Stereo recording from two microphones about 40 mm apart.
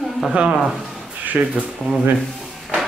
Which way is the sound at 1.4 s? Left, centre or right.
Right.